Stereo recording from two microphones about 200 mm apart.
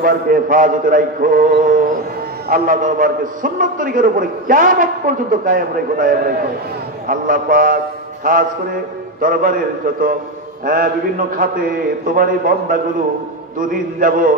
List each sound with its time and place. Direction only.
0.0 s a man's voice: 45° right (ahead or behind)
12.2 s a man's voice: 45° right (ahead or behind)